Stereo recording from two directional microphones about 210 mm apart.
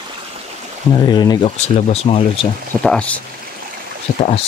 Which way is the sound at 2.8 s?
5° left (ahead or behind).